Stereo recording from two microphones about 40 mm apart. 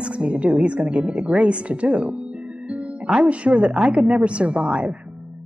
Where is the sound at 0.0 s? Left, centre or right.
Right.